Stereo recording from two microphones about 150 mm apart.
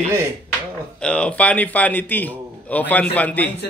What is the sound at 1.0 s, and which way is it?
Speech, 5° left (ahead or behind).